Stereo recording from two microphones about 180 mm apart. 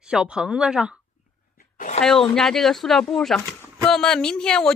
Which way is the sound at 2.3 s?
5° left (ahead or behind).